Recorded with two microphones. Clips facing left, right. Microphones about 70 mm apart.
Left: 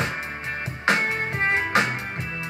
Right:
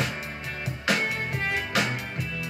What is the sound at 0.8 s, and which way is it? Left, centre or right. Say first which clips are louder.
Music: left 4 dB; left.